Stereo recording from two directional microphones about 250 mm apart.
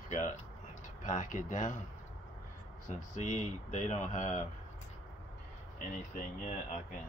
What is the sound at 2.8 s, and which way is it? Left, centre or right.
Speech, left.